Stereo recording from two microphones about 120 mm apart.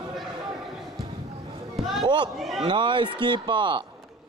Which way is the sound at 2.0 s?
40° right (ahead or behind).